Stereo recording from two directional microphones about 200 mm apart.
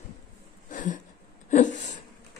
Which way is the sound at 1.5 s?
35° left (ahead or behind).